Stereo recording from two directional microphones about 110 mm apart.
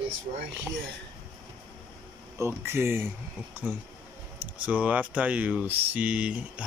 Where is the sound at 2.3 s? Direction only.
25° right (ahead or behind).